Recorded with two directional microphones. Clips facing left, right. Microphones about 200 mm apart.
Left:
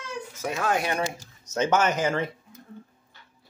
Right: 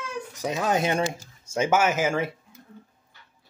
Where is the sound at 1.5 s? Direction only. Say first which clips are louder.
Right 1 dB; 10° right (ahead or behind).